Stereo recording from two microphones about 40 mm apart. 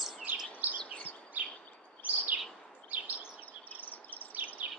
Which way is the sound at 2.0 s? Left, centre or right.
Right.